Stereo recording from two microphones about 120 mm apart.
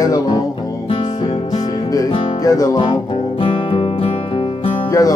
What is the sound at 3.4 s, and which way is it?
Music, 50° left (ahead or behind).